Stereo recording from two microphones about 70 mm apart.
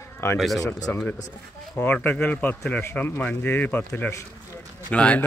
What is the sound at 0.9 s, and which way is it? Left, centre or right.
Speech, left.